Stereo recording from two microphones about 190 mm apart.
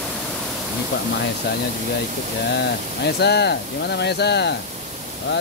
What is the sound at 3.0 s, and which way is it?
Speech, 60° left (ahead or behind).